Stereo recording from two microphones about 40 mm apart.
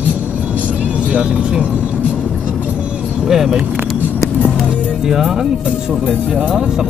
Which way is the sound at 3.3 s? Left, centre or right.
Centre.